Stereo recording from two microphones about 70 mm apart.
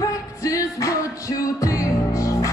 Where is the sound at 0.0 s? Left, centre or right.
Left.